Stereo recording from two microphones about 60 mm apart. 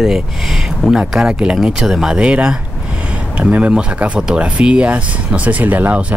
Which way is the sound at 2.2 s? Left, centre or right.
Centre.